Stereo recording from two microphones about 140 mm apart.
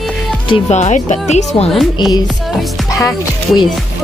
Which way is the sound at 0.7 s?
55° left (ahead or behind).